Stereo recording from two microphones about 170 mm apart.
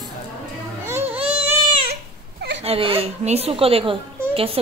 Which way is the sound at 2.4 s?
90° right.